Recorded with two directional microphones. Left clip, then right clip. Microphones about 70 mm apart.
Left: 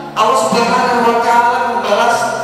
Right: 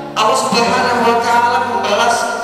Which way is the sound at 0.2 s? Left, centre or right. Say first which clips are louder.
Left 1 dB; right.